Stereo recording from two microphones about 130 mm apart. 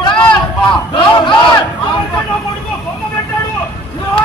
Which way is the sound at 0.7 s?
35° left (ahead or behind).